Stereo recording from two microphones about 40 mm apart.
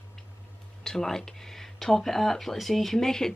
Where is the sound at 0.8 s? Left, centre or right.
Centre.